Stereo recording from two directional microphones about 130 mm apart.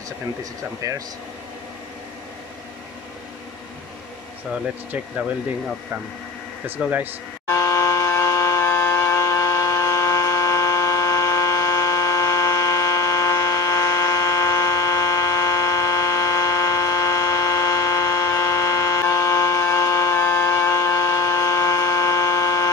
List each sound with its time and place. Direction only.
0.4 s speech: 25° right (ahead or behind)
4.5 s speech: 15° right (ahead or behind)
6.6 s speech: 15° right (ahead or behind)
7.4 s a sound: 25° left (ahead or behind)